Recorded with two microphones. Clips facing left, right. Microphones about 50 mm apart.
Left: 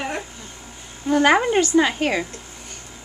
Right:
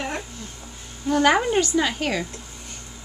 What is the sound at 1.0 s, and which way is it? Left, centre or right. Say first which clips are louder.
A woman's voice: left 2 dB; centre.